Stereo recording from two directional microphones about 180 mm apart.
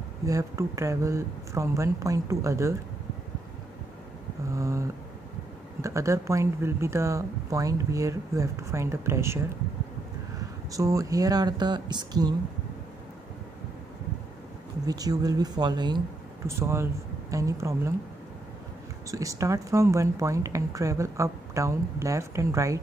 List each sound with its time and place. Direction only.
0.2 s speech: 15° right (ahead or behind)
4.5 s speech: 15° right (ahead or behind)
10.7 s speech: 20° right (ahead or behind)
14.9 s speech: 20° right (ahead or behind)
19.0 s speech: 15° right (ahead or behind)